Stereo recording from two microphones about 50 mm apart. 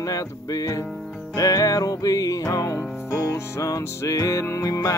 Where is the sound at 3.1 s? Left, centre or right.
Left.